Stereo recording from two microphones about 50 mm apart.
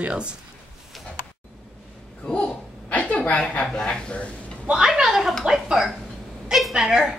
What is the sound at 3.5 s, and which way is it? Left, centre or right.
Speech, centre.